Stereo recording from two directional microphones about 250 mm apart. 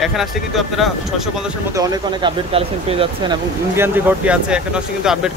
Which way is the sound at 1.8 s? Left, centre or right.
Centre.